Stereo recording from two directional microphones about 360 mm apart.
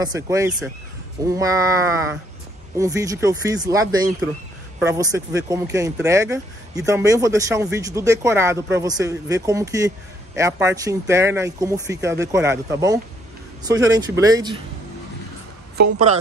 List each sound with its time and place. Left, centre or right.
0.0 s speech: centre
15.8 s a woman's voice: centre